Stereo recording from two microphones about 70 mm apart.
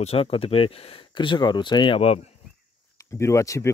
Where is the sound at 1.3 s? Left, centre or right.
Left.